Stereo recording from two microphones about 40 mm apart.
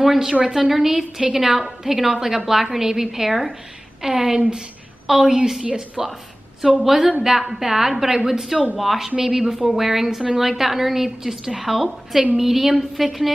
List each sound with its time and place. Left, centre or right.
0.0 s a sound: centre
0.3 s a woman's voice: centre
6.8 s a woman's voice: centre